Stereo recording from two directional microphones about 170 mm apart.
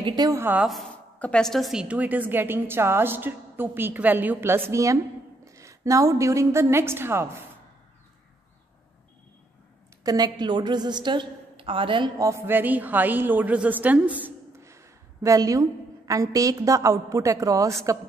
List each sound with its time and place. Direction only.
0.0 s a woman's voice: 25° right (ahead or behind)
0.7 s a woman's voice: 5° left (ahead or behind); by 7.4 s 15° right (ahead or behind)
10.0 s a woman's voice: 25° right (ahead or behind)